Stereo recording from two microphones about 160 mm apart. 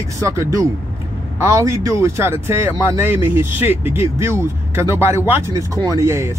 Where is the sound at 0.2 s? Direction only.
20° right (ahead or behind).